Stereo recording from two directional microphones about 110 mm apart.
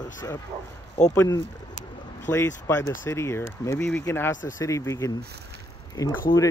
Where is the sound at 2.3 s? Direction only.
25° left (ahead or behind).